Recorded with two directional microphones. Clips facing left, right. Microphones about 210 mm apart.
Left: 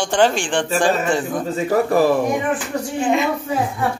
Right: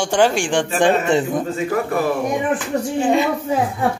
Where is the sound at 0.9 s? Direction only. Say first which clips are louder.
Right 2 dB; 20° right (ahead or behind).